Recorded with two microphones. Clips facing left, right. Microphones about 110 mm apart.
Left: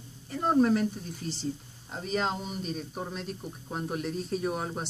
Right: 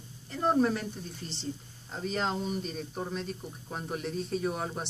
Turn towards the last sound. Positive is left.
turn(degrees=5)  # may be behind; listen again after turning